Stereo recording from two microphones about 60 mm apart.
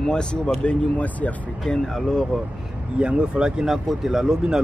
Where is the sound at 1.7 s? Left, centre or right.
Centre.